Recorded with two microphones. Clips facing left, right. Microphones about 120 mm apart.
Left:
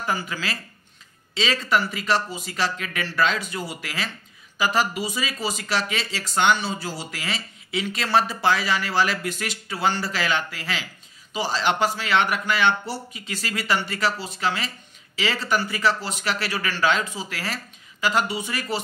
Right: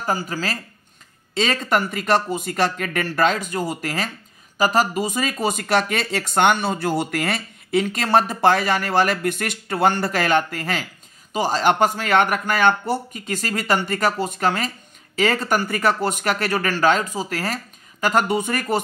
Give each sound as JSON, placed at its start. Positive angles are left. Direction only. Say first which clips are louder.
{"t": 0.0, "sound": "speech", "louder": "right 3 dB", "side_deg": -40}